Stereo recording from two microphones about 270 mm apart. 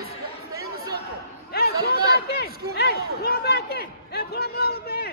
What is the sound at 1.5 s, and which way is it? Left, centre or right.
Chatter, left.